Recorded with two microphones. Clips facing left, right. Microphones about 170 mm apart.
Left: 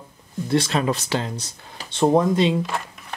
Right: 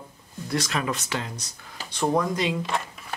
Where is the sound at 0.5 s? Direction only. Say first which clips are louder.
Left 6 dB; 30° left (ahead or behind).